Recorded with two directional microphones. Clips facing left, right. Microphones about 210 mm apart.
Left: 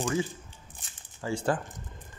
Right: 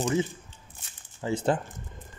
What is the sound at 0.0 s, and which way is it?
Speech, 20° right (ahead or behind).